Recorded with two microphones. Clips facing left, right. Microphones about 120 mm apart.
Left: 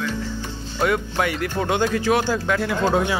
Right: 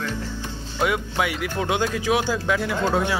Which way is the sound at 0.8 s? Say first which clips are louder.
Left 2 dB; 5° right (ahead or behind).